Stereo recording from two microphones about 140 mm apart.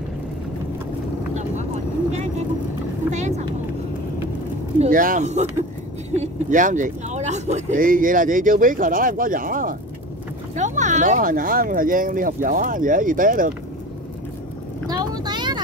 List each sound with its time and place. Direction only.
3.1 s vehicle: 55° right (ahead or behind)
4.7 s speech: 75° right (ahead or behind); by 7.6 s 55° right (ahead or behind)
7.7 s speech: 80° right
10.5 s speech: 60° right (ahead or behind); by 13.5 s 75° right (ahead or behind)
14.9 s vehicle: 30° right (ahead or behind)